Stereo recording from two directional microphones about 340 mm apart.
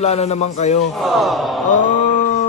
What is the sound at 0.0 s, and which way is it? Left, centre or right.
Speech, centre.